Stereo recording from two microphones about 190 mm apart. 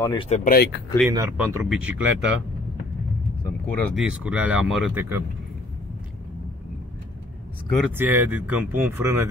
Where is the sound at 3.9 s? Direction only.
5° right (ahead or behind).